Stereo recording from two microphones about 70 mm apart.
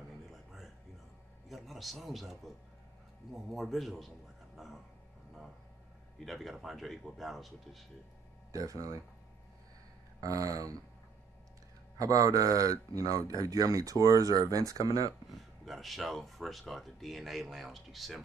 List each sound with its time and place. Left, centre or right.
1.5 s speech: centre
4.6 s music: centre
6.2 s speech: centre
8.5 s speech: right
10.2 s speech: right
12.0 s speech: right
15.6 s speech: centre